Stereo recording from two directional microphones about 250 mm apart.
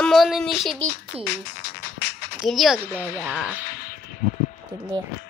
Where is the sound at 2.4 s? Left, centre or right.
Centre.